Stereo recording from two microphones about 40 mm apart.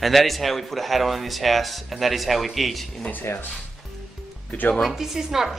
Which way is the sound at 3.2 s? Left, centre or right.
Left.